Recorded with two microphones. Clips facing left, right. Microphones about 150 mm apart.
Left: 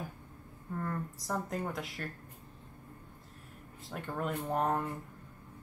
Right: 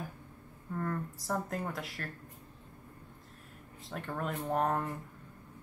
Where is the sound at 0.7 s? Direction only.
Centre (ahead or behind).